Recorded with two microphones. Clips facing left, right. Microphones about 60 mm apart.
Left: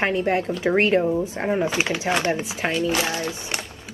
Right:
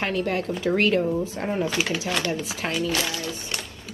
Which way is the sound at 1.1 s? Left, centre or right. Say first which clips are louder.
Left 3 dB; centre.